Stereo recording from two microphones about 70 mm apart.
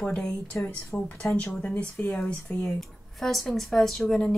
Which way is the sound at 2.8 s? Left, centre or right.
Centre.